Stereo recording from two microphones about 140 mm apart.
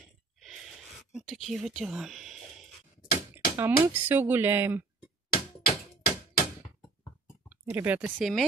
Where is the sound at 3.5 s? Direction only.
15° right (ahead or behind).